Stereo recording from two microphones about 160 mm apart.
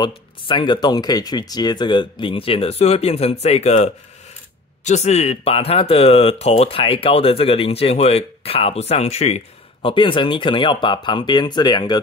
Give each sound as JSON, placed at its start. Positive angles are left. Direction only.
{"t": 0.0, "sound": "speech", "side_deg": 30}